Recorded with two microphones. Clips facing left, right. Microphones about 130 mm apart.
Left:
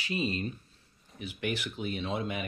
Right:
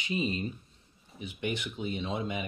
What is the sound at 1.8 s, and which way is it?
Speech, 25° right (ahead or behind).